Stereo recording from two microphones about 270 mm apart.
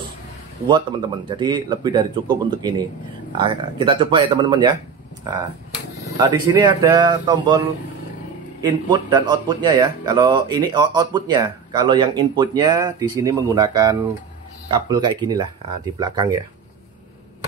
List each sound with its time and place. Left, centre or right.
1.3 s speech: centre
8.6 s speech: centre